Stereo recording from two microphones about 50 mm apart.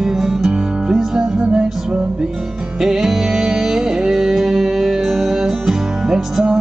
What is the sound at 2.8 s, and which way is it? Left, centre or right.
Music, centre.